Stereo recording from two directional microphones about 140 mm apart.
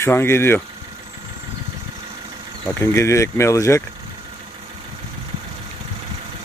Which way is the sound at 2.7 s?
20° left (ahead or behind).